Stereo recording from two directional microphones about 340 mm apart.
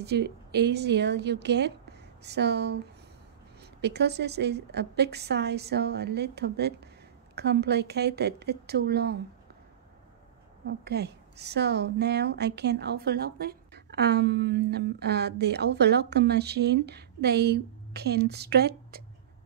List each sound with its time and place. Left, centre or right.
0.0 s a woman's voice: right
3.8 s a woman's voice: right
10.7 s a woman's voice: right